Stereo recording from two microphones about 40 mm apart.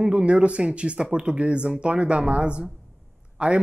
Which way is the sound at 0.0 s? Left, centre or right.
Right.